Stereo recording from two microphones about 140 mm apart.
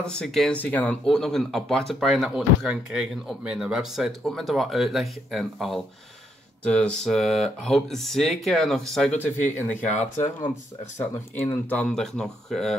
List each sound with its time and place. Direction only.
0.0 s speech: 5° left (ahead or behind)